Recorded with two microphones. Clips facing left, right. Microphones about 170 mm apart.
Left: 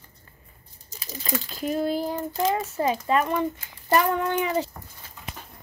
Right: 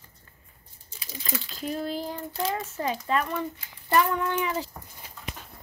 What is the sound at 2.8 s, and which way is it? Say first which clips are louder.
A child's voice: left 4 dB; 45° left (ahead or behind).